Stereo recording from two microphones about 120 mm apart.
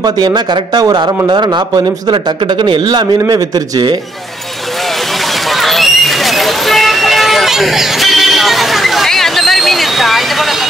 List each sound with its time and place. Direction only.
0.0 s a man's voice: 35° right (ahead or behind)
5.5 s vehicle: centre (ahead or behind)